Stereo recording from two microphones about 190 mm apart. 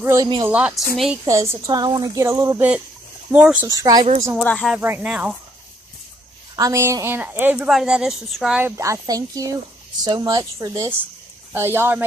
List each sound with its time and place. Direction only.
0.0 s a woman's voice: 15° right (ahead or behind)
4.4 s speech: 5° left (ahead or behind)
4.7 s a woman's voice: 10° right (ahead or behind)
6.5 s a woman's voice: 15° right (ahead or behind)